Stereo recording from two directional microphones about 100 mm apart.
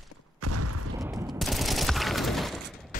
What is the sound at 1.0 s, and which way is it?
Fusillade, 30° right (ahead or behind).